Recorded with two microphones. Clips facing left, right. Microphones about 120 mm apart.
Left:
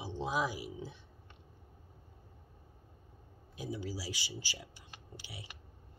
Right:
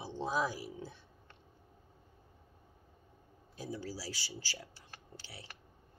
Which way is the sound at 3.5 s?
15° left (ahead or behind).